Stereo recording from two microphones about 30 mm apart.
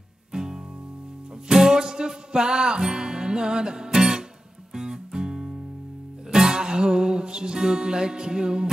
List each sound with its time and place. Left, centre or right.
0.3 s music: centre